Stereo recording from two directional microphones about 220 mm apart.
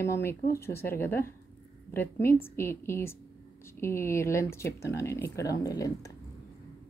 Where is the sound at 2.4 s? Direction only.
10° left (ahead or behind).